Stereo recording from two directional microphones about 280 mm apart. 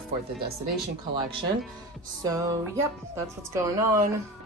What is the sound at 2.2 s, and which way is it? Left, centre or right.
Speech, centre.